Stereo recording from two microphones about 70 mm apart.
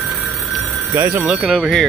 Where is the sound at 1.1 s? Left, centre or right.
Centre.